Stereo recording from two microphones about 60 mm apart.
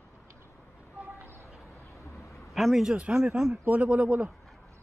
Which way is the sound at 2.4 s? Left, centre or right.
Centre.